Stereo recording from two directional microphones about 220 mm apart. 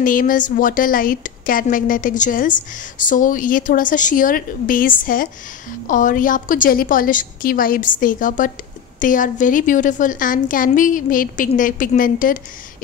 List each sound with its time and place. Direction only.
0.0 s a woman's voice: 40° left (ahead or behind)